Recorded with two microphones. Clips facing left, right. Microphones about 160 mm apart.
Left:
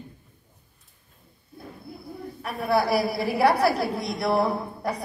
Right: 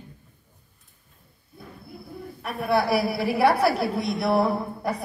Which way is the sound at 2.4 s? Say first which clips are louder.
Even; centre (ahead or behind).